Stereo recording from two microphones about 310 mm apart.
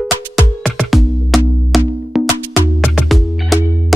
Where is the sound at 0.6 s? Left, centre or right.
Centre.